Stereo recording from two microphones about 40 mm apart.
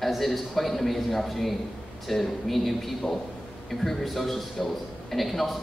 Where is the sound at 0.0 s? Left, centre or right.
Centre.